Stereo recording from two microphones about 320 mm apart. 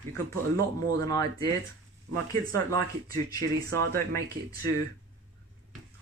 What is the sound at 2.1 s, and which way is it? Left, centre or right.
Speech, right.